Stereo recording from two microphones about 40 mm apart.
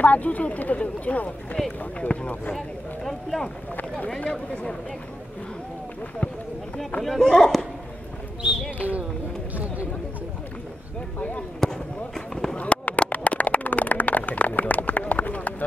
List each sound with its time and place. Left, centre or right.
0.0 s speech: left
2.5 s speech: centre
4.2 s speech: left
7.0 s speech: centre
8.4 s a sound: right
11.6 s basketball bounce: centre
12.5 s a sound: left